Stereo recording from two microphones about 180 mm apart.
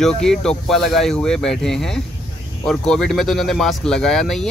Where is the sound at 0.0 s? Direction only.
5° left (ahead or behind).